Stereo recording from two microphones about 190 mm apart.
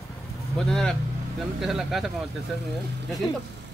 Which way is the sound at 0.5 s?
Centre (ahead or behind).